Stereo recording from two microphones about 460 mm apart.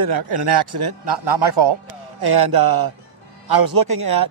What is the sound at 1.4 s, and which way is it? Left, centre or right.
Speech, right.